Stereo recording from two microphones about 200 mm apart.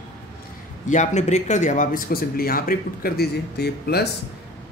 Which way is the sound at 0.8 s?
35° left (ahead or behind).